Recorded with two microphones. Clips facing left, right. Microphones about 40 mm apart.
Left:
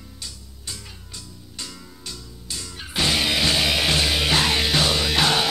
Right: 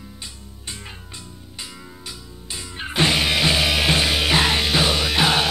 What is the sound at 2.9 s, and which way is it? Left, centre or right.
Music, right.